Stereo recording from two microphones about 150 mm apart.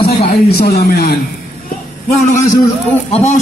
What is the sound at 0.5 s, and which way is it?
Speech, 90° left.